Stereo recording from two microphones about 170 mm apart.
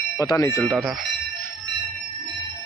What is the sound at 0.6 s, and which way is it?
Speech, 5° left (ahead or behind).